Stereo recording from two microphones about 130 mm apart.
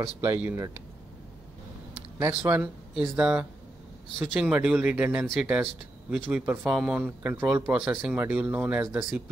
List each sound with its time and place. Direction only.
0.0 s speech: 20° right (ahead or behind)
2.3 s speech: 10° right (ahead or behind)